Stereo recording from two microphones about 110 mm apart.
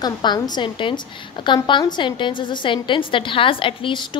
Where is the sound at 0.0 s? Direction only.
40° left (ahead or behind).